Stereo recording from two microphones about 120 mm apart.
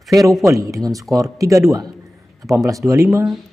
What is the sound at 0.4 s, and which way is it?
Speech, 25° right (ahead or behind).